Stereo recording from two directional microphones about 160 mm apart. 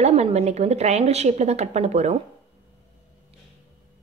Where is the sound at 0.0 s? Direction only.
40° right (ahead or behind).